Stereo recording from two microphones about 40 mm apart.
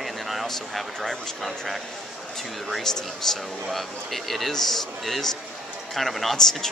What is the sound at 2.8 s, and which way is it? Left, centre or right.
Speech, centre.